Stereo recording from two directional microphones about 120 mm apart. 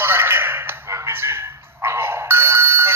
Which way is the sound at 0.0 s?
20° right (ahead or behind).